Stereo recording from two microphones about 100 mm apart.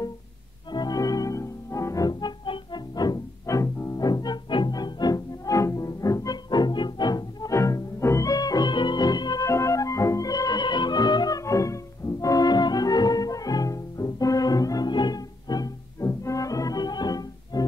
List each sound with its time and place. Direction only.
0.7 s music: 45° left (ahead or behind); by 4.0 s 30° left (ahead or behind)
4.0 s music: 40° left (ahead or behind)
9.5 s music: 30° left (ahead or behind)